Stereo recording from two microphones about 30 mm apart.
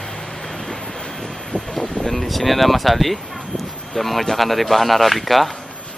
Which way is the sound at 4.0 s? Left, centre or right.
Centre.